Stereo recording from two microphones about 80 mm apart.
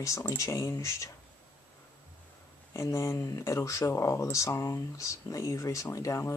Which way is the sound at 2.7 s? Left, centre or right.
Left.